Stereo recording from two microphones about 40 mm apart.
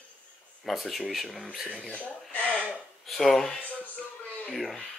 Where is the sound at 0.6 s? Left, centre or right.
Centre.